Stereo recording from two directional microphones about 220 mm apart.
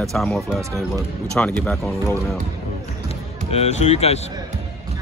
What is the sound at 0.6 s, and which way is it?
Speech, 15° right (ahead or behind).